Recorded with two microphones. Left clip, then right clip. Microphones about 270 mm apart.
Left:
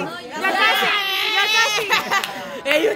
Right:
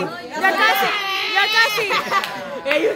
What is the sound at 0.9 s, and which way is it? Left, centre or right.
Baby cry, left.